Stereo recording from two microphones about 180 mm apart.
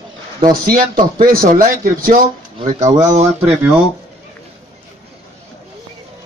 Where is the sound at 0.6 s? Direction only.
50° right (ahead or behind).